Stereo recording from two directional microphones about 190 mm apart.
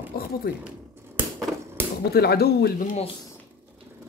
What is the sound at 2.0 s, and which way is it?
Speech, 55° left (ahead or behind).